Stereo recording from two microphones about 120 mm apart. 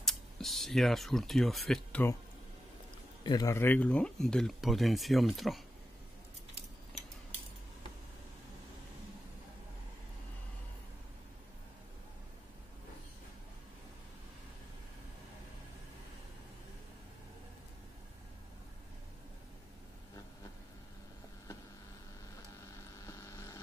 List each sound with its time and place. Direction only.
0.0 s speech: centre (ahead or behind)
3.3 s a man's voice: 35° left (ahead or behind)
3.5 s speech: 15° left (ahead or behind); by 5.6 s centre (ahead or behind)
23.0 s hum: 25° left (ahead or behind)